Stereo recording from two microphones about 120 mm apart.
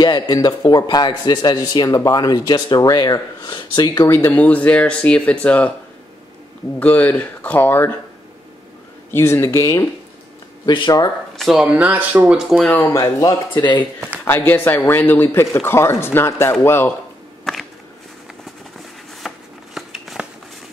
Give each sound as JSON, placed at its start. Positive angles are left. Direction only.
{"t": 0.0, "sound": "speech", "side_deg": 35}
{"t": 6.8, "sound": "a man's voice", "side_deg": 15}
{"t": 9.1, "sound": "speech", "side_deg": 20}
{"t": 10.6, "sound": "speech", "side_deg": 40}
{"t": 11.3, "sound": "speech", "side_deg": 0}
{"t": 11.6, "sound": "speech", "side_deg": -10}
{"t": 12.7, "sound": "a man's voice", "side_deg": 15}
{"t": 13.0, "sound": "speech", "side_deg": 30}
{"t": 14.2, "sound": "a man's voice", "side_deg": 15}
{"t": 19.2, "sound": "shuffling cards", "side_deg": 0}